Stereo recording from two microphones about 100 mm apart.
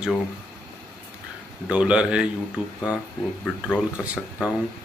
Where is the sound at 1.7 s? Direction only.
10° right (ahead or behind).